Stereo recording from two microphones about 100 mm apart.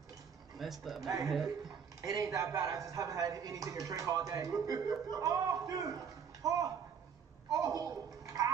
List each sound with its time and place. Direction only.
0.6 s speech: centre (ahead or behind)
1.0 s speech: 35° right (ahead or behind)
7.5 s a sound: 35° right (ahead or behind)